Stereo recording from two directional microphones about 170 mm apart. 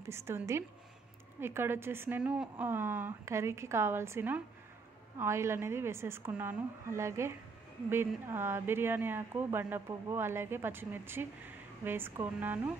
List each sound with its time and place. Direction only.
0.0 s speech: 15° right (ahead or behind)